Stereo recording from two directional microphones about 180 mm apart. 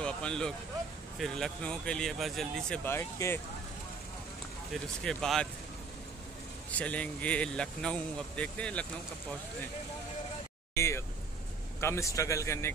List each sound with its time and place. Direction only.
0.0 s speech: 5° left (ahead or behind)
5.0 s speech: 5° left (ahead or behind)
6.7 s speech: 10° left (ahead or behind)
10.8 s speech: 15° left (ahead or behind)